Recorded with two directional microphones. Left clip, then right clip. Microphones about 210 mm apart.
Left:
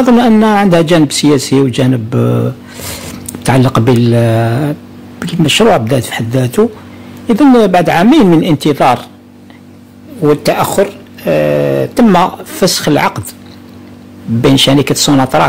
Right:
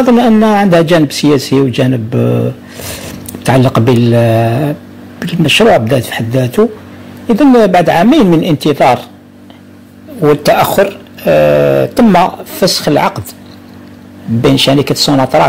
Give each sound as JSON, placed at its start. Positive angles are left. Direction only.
{"t": 0.0, "sound": "speech", "side_deg": 15}
{"t": 10.2, "sound": "speech", "side_deg": 0}
{"t": 14.4, "sound": "speech", "side_deg": 15}